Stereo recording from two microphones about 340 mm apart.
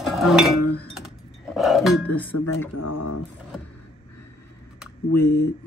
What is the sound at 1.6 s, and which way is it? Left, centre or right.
Speech, centre.